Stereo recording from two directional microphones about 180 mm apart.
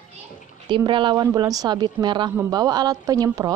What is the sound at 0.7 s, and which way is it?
A woman's voice, 25° right (ahead or behind).